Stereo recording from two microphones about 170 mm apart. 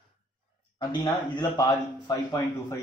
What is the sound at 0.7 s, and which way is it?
Speech, 25° left (ahead or behind).